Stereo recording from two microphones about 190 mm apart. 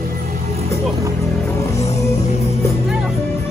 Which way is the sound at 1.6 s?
15° left (ahead or behind).